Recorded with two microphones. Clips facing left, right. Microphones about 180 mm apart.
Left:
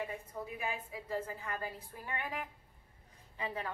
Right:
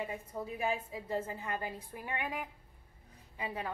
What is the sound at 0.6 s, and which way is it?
A woman's voice, 25° right (ahead or behind).